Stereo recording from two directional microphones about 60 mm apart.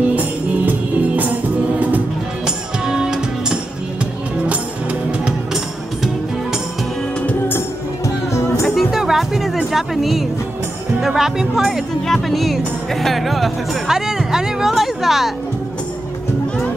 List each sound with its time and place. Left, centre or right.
0.1 s music: right
2.4 s music: centre
8.3 s music: left
8.7 s music: centre
11.0 s speech: centre